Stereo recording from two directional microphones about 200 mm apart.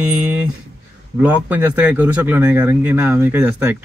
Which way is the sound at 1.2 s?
10° right (ahead or behind).